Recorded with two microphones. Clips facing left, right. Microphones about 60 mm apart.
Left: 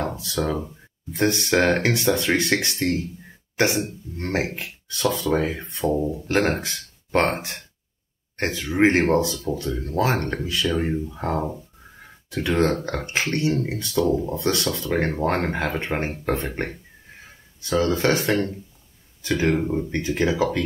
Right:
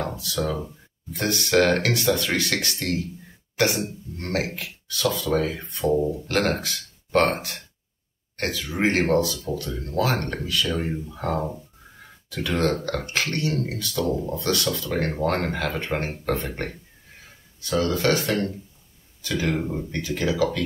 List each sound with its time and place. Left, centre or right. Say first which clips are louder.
0.1 s a sound: even; left
1.1 s speech: left 1 dB; left
12.3 s speech: left 3 dB; left
13.9 s speech: left 4 dB; centre
14.4 s speech: left 1 dB; left
19.6 s speech: left 4 dB; centre
19.9 s speech: left 1 dB; left